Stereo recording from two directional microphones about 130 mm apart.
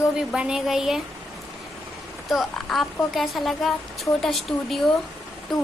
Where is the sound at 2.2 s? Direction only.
Centre (ahead or behind).